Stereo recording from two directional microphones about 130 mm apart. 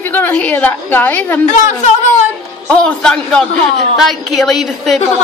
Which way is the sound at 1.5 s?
65° left (ahead or behind).